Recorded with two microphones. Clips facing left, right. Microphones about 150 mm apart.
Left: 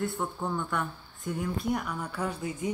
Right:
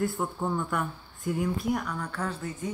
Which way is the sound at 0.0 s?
Centre (ahead or behind).